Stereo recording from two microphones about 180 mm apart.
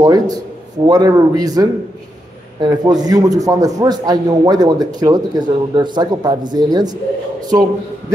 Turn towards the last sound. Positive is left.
turn(degrees=-20)  # may be behind; listen again after turning